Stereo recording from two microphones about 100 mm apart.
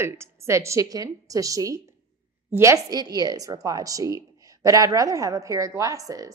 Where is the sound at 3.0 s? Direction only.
40° right (ahead or behind).